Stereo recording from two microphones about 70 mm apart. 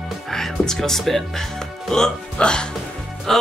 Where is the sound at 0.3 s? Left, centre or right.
Centre.